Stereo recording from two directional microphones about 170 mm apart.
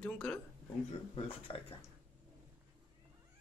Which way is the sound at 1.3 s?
35° left (ahead or behind).